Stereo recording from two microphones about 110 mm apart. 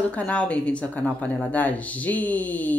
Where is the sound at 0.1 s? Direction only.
10° left (ahead or behind).